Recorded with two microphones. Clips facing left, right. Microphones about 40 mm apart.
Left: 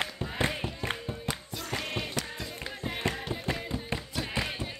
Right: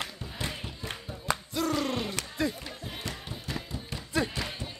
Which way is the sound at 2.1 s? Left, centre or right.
Right.